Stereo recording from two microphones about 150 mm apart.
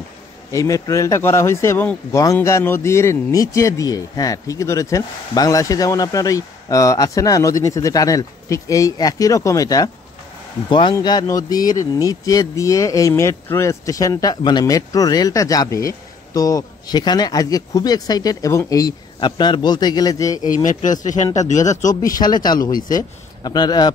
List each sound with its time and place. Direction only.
0.5 s a man's voice: 20° left (ahead or behind)
20.4 s speech: 60° left (ahead or behind)
22.2 s a man's voice: 30° left (ahead or behind)